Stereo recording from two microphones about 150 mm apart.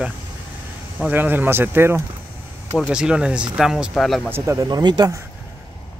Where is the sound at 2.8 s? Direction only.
5° right (ahead or behind).